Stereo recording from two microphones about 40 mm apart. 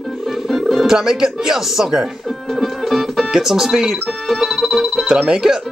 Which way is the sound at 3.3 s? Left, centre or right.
Centre.